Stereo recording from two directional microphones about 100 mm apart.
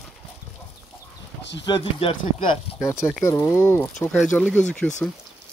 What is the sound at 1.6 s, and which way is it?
Speech, 55° left (ahead or behind).